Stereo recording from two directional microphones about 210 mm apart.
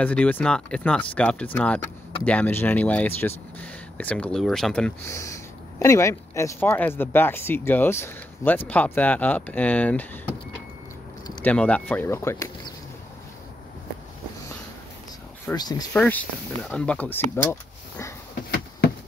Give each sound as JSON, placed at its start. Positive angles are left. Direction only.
{"t": 0.0, "sound": "speech", "side_deg": 5}
{"t": 11.4, "sound": "speech", "side_deg": 5}
{"t": 15.4, "sound": "speech", "side_deg": 20}
{"t": 15.9, "sound": "speech", "side_deg": 5}